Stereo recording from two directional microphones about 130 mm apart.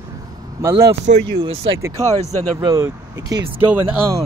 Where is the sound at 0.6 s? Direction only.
25° right (ahead or behind).